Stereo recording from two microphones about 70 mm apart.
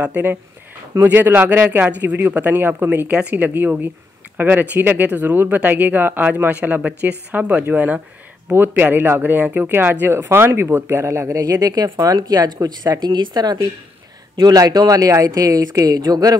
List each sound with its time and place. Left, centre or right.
0.0 s speech: right
14.4 s speech: right